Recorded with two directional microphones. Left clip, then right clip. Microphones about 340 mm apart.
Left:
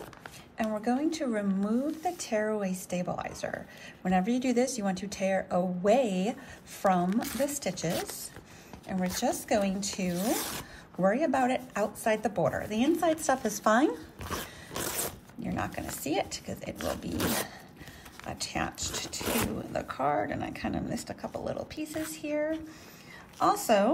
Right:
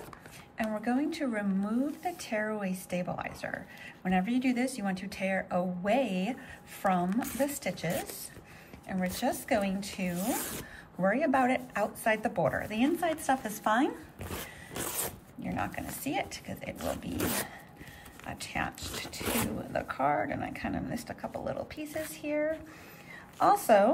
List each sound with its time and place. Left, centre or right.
0.6 s speech: centre
14.3 s biting: centre
15.4 s speech: centre